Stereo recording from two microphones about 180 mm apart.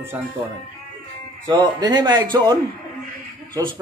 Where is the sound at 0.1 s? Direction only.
10° right (ahead or behind).